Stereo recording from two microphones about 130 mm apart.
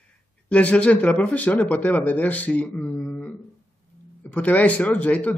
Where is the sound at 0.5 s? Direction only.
10° left (ahead or behind).